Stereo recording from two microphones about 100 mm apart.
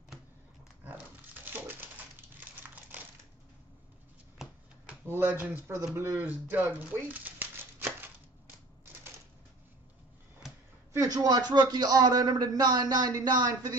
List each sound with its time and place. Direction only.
0.8 s dog: 20° right (ahead or behind)
2.6 s crumpling: 15° right (ahead or behind)
5.1 s speech: 20° right (ahead or behind)
10.9 s a man's voice: 35° right (ahead or behind)